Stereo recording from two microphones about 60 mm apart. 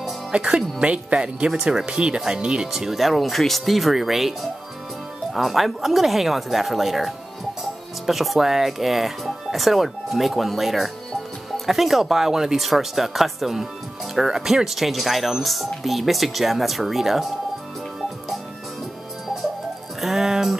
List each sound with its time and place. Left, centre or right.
0.3 s speech: centre
20.0 s music: centre